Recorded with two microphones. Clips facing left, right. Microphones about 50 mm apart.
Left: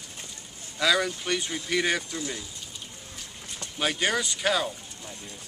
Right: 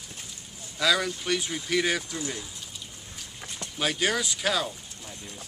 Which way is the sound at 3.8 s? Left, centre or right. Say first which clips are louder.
Even; centre.